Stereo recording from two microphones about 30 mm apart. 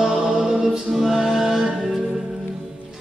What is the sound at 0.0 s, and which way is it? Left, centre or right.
Music, centre.